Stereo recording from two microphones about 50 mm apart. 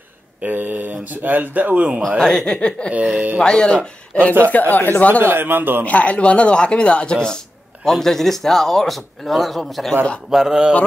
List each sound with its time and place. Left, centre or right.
0.4 s speech: right
2.0 s speech: centre
2.9 s speech: right
3.4 s speech: centre
4.5 s speech: left
5.2 s a man's voice: right
5.9 s speech: left; by 9.9 s centre
10.3 s a sound: centre